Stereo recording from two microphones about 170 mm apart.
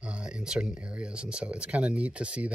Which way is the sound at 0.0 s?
5° right (ahead or behind).